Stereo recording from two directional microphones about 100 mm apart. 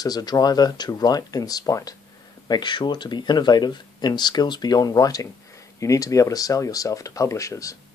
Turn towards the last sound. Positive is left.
turn(degrees=35)  # may be behind; listen again after turning